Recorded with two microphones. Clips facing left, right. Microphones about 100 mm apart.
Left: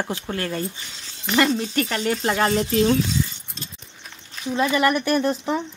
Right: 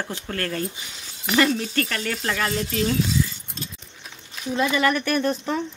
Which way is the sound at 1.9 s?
25° left (ahead or behind).